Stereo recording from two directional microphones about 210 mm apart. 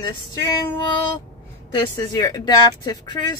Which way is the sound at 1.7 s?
20° left (ahead or behind).